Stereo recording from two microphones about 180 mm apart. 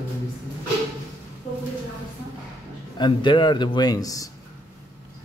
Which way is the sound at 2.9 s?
25° left (ahead or behind).